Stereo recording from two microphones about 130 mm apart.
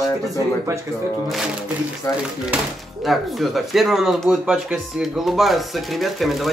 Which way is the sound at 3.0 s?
Centre (ahead or behind).